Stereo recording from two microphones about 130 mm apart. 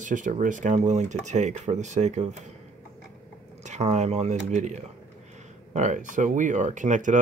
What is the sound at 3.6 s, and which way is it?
Speech, 60° right (ahead or behind).